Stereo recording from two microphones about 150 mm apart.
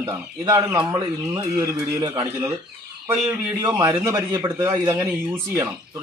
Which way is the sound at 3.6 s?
20° right (ahead or behind).